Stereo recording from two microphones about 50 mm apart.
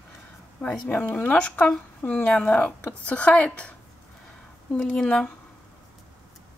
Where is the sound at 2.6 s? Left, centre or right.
Left.